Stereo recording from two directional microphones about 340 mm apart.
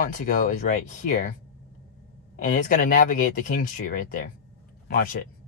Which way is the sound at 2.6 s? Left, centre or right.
Left.